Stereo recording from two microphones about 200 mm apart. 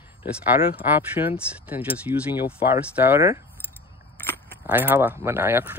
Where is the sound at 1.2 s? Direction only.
25° left (ahead or behind).